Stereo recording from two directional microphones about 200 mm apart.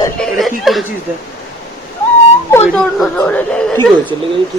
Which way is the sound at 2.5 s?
5° left (ahead or behind).